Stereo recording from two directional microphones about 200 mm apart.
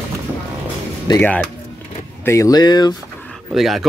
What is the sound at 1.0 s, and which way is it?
Speech, 15° left (ahead or behind).